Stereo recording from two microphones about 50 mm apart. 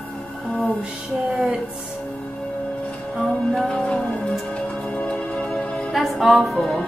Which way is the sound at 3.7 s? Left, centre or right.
Left.